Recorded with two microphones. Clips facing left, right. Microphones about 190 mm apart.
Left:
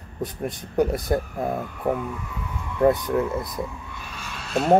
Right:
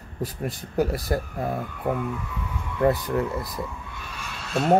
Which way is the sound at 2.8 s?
20° left (ahead or behind).